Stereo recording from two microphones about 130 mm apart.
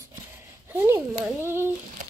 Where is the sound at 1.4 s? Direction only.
20° right (ahead or behind).